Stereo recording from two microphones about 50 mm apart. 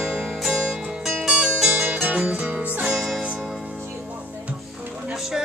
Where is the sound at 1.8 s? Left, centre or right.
Right.